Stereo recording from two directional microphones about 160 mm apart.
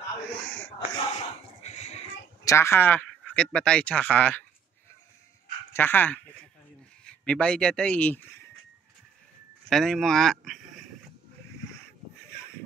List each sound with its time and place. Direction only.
0.3 s speech: 5° left (ahead or behind)
1.1 s a sound: 40° left (ahead or behind)
2.4 s speech: 15° left (ahead or behind)
5.7 s speech: 10° left (ahead or behind)
9.7 s speech: centre (ahead or behind)